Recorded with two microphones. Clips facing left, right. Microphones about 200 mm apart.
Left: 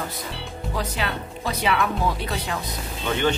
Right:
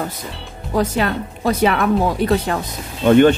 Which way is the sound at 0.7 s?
50° right (ahead or behind).